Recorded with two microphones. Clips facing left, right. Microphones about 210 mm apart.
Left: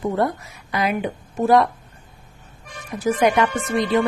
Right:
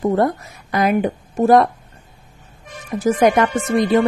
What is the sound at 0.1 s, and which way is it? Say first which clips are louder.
A woman's voice: right 4 dB; 45° right (ahead or behind).